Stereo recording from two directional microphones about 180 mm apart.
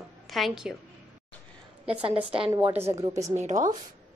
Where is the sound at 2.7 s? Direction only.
15° right (ahead or behind).